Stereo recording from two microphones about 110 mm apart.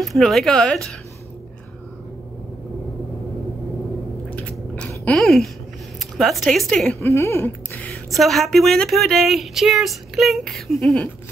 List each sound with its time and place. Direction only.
0.0 s speech: centre (ahead or behind)
4.4 s chewing: 10° left (ahead or behind)
5.9 s speech: centre (ahead or behind)
7.0 s a sound: 25° left (ahead or behind)
8.1 s speech: centre (ahead or behind)